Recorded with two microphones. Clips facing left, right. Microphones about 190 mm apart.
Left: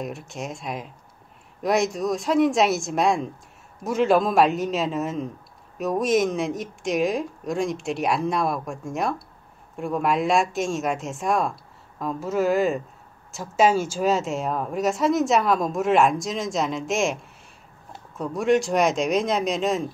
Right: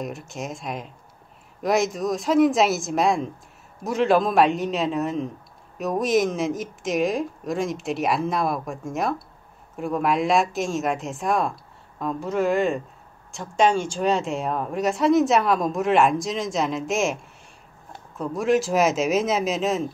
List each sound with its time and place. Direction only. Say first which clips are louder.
0.0 s speech: even; centre (ahead or behind)